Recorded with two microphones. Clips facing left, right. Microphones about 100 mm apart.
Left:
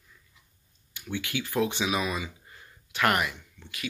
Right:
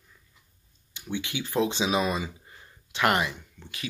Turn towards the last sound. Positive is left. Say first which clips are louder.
# right 2 dB
turn(degrees=-30)  # may be behind; listen again after turning